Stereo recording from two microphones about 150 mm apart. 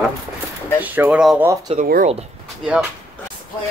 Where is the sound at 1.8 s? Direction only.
75° right (ahead or behind).